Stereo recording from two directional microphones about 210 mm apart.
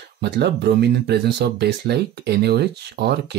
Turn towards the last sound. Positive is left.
turn(degrees=-50)  # may be behind; listen again after turning